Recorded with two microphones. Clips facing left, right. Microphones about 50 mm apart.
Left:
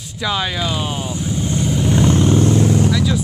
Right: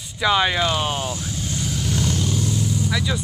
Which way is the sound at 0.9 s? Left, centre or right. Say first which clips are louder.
Left 4 dB; centre.